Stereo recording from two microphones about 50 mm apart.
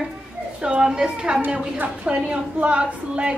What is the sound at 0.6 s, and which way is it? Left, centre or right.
A woman's voice, centre.